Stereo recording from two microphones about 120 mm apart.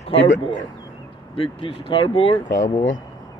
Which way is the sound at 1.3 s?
50° left (ahead or behind).